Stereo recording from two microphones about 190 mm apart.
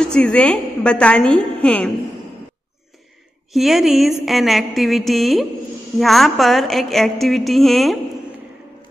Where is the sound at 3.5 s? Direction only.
Centre (ahead or behind).